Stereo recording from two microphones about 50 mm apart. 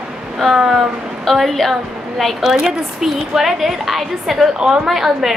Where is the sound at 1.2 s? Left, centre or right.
Centre.